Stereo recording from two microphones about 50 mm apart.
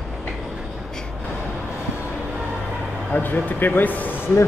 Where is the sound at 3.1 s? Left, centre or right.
Left.